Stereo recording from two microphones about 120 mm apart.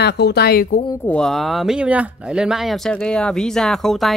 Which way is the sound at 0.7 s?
80° left.